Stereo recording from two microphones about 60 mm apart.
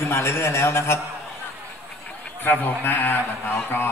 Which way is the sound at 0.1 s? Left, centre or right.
Left.